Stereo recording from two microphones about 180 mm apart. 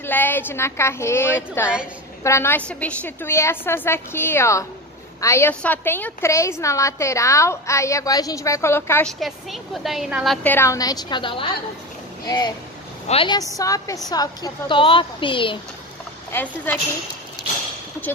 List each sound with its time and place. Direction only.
0.0 s a woman's voice: 10° left (ahead or behind)
9.2 s a woman's voice: centre (ahead or behind); by 15.6 s 30° left (ahead or behind)
16.3 s a woman's voice: 10° left (ahead or behind)